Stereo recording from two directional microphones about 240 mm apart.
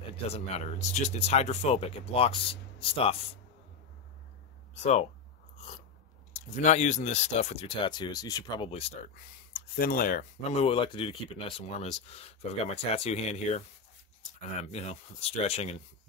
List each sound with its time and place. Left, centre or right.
0.3 s speech: left
4.7 s speech: left
6.3 s speech: left